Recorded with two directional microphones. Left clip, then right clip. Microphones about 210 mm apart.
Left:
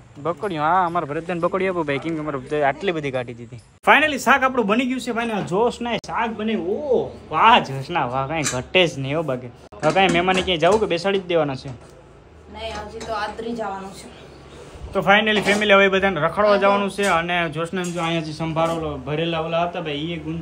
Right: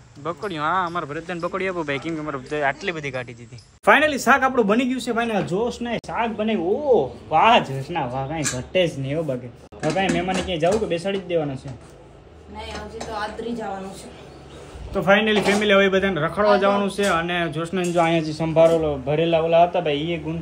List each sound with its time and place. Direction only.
0.2 s a man's voice: 5° right (ahead or behind)
7.9 s speech: 35° left (ahead or behind)
9.9 s speech: 35° left (ahead or behind)
10.3 s a man's voice: centre (ahead or behind)
12.5 s a man's voice: centre (ahead or behind)
15.0 s a man's voice: centre (ahead or behind)